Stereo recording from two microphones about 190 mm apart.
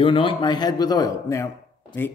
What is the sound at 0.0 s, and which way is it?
Speech, 25° left (ahead or behind).